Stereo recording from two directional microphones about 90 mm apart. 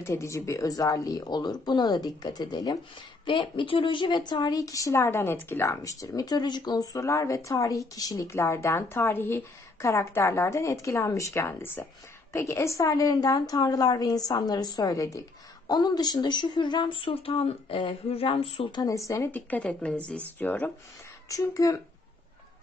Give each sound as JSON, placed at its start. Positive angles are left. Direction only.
{"t": 0.0, "sound": "a woman's voice", "side_deg": 30}
{"t": 3.3, "sound": "a woman's voice", "side_deg": 70}
{"t": 12.8, "sound": "a woman's voice", "side_deg": 45}
{"t": 18.8, "sound": "a woman's voice", "side_deg": 40}
{"t": 19.3, "sound": "speech", "side_deg": 15}
{"t": 21.3, "sound": "a woman's voice", "side_deg": 40}